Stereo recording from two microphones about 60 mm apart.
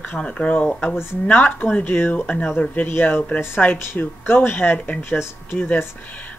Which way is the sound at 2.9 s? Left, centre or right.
Left.